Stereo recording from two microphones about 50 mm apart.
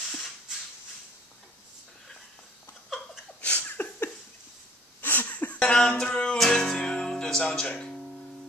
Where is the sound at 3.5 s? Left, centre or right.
Left.